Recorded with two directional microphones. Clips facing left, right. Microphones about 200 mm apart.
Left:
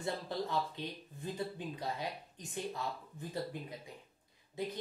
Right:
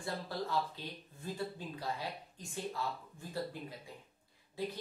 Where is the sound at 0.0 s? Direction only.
20° left (ahead or behind).